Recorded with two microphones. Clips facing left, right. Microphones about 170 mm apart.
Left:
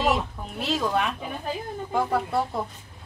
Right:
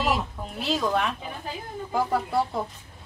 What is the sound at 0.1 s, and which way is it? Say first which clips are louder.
Speech: left 1 dB; centre (ahead or behind).